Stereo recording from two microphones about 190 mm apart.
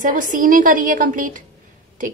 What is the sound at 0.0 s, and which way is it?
Speech, 45° right (ahead or behind).